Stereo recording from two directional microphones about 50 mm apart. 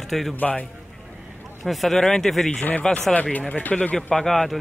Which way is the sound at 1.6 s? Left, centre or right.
Centre.